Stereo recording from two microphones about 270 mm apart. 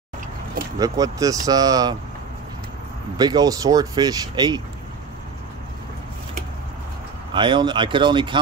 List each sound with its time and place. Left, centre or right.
0.7 s speech: centre
3.2 s speech: centre
7.3 s speech: centre